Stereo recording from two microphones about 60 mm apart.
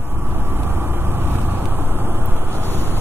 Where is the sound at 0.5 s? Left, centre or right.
Right.